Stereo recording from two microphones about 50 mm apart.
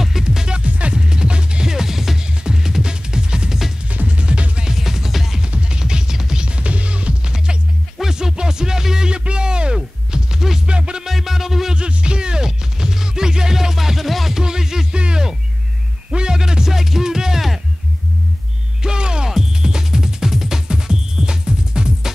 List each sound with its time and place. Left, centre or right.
0.2 s music: centre
4.6 s music: centre
5.4 s music: centre
10.7 s music: centre
11.1 s music: centre
11.7 s music: centre
15.0 s a sound: centre
18.8 s music: centre